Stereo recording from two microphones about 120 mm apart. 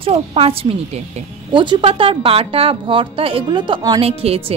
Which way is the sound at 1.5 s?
40° right (ahead or behind).